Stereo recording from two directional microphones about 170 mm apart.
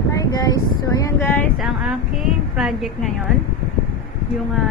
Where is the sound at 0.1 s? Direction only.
20° left (ahead or behind).